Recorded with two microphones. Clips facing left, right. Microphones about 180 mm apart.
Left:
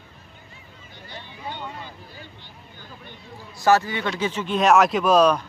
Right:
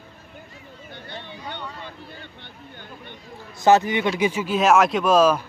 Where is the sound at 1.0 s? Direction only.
60° right (ahead or behind).